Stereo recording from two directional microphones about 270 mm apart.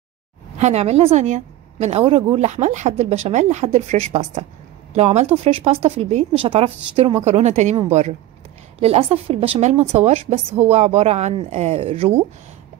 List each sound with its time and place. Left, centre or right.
0.6 s a woman's voice: right